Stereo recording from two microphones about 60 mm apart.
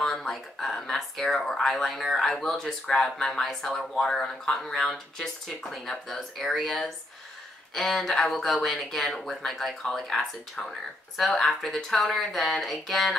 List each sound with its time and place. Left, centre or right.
0.0 s speech: centre